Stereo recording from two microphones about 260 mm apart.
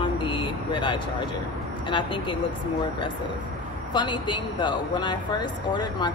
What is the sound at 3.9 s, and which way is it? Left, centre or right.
Speech, centre.